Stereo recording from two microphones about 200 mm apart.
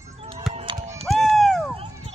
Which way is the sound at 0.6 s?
20° right (ahead or behind).